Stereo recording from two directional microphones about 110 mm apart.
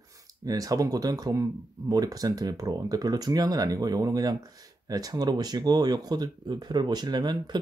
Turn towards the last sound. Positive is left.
turn(degrees=-40)  # may be behind; listen again after turning